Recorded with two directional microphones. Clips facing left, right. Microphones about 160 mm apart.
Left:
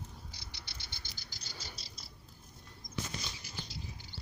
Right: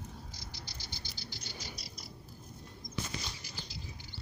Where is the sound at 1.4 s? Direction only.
30° left (ahead or behind).